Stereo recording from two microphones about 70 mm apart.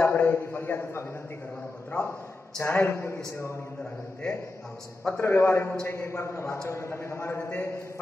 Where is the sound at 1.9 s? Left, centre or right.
Centre.